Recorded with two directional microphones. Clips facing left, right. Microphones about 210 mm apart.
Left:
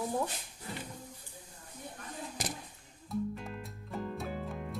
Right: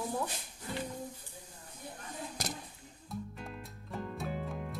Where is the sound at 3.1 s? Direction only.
Centre (ahead or behind).